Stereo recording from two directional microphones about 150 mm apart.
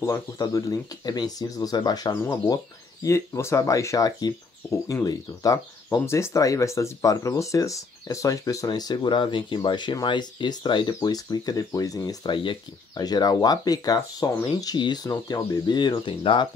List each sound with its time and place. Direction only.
0.0 s speech: 20° left (ahead or behind)